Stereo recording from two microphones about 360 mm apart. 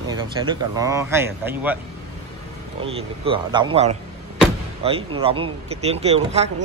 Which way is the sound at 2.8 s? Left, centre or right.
Centre.